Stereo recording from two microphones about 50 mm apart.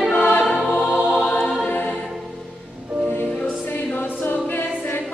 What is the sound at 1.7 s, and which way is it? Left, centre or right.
Music, left.